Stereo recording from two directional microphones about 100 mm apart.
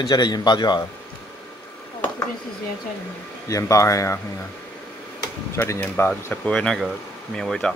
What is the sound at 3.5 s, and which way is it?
Speech, 30° left (ahead or behind).